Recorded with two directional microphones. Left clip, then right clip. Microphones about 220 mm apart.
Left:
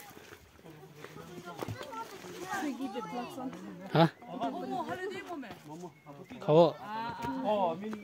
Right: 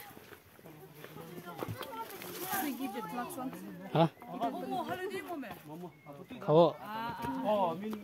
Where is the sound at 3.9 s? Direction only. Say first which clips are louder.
Left 3 dB; 15° left (ahead or behind).